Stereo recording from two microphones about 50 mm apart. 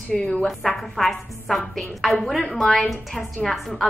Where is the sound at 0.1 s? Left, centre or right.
Centre.